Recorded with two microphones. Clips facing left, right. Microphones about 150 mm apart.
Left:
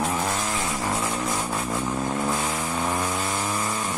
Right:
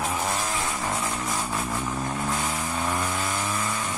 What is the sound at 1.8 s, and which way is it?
Vehicle, 15° left (ahead or behind).